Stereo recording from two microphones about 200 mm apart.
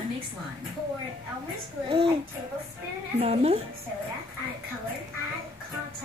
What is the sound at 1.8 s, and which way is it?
Speech, 30° right (ahead or behind).